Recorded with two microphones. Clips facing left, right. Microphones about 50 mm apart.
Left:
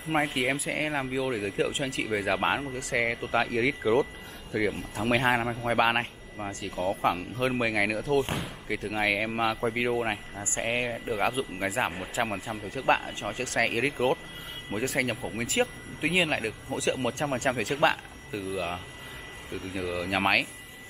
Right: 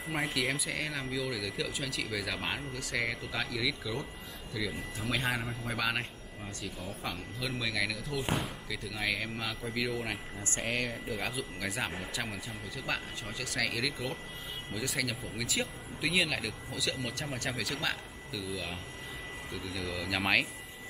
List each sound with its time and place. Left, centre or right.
0.1 s speech: left
2.0 s speech: left
10.3 s speech: centre; by 20.0 s left